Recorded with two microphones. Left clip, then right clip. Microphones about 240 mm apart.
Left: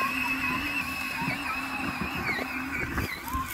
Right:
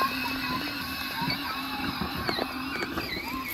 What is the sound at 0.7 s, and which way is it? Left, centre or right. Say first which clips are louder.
Music: left 2 dB; centre.